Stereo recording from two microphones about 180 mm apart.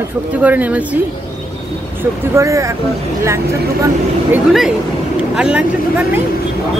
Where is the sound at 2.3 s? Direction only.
15° right (ahead or behind).